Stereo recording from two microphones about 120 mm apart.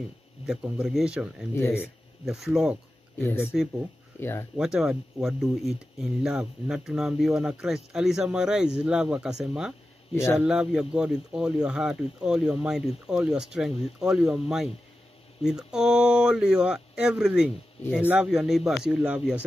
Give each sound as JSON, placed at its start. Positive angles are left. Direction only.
{"t": 0.5, "sound": "speech", "side_deg": -5}
{"t": 1.5, "sound": "speech", "side_deg": 20}
{"t": 1.8, "sound": "speech", "side_deg": -5}
{"t": 4.2, "sound": "speech", "side_deg": 20}
{"t": 4.6, "sound": "speech", "side_deg": -5}
{"t": 15.4, "sound": "speech", "side_deg": -5}
{"t": 19.0, "sound": "speech", "side_deg": -10}